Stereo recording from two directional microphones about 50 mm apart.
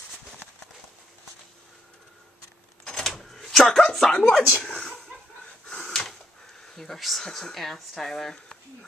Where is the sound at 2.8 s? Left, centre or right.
Centre.